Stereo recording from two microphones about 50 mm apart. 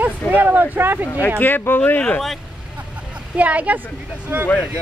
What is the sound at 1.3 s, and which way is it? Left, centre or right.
Speech, left.